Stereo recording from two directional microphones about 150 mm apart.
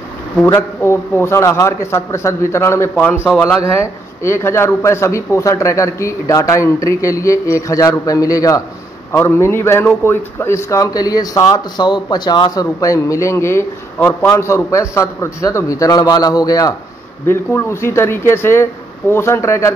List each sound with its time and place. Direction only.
0.5 s a man's voice: 15° left (ahead or behind)